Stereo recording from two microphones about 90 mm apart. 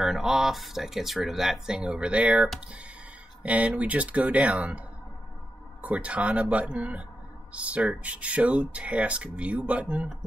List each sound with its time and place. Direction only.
0.0 s speech: 5° right (ahead or behind)